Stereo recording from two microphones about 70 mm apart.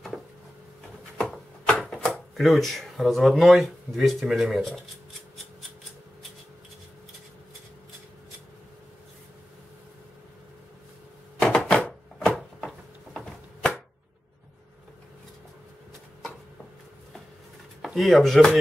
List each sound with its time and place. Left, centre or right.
1.7 s speech: centre
11.4 s a sound: centre
17.8 s speech: centre